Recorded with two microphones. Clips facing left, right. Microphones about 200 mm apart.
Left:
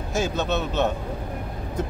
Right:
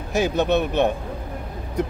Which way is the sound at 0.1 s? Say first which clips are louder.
Right 5 dB; 15° right (ahead or behind).